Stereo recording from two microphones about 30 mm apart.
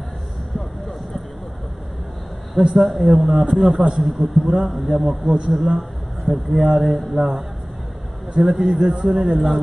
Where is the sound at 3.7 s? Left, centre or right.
Right.